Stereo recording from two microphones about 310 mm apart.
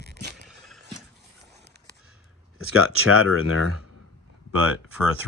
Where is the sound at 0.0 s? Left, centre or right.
Right.